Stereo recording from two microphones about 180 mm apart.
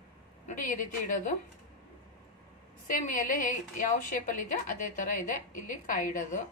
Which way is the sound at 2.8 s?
50° left (ahead or behind).